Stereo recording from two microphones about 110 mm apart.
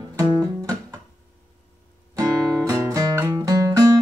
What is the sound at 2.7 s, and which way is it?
Music, 30° right (ahead or behind).